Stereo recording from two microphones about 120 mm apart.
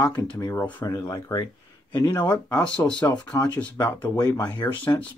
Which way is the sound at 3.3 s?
35° left (ahead or behind).